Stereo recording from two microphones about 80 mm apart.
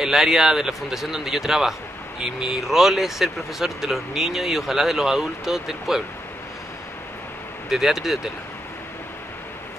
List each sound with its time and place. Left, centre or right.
0.0 s a man's voice: centre
7.7 s a man's voice: centre